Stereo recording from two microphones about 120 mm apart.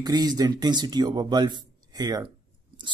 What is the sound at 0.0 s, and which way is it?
Speech, 35° right (ahead or behind).